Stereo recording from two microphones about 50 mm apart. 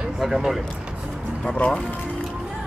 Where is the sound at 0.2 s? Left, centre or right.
Centre.